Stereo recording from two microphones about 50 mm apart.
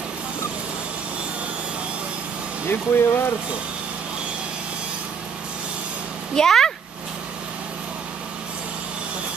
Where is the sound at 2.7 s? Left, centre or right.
Left.